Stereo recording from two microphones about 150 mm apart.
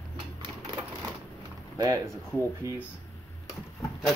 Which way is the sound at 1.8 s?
25° right (ahead or behind).